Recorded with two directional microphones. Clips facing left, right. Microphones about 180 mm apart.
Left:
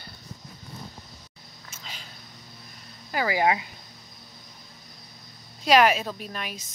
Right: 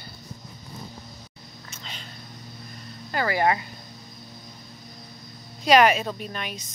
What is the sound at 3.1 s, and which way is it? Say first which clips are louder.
Speech: right 1 dB; 10° left (ahead or behind).